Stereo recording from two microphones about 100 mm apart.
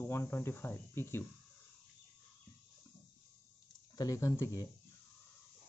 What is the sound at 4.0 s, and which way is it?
Speech, 30° left (ahead or behind).